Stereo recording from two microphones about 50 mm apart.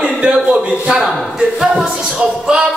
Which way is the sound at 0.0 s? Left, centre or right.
Centre.